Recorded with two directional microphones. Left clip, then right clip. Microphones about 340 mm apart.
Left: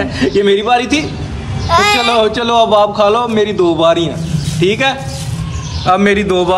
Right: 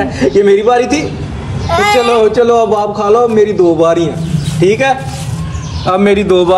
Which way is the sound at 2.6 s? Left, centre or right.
Centre.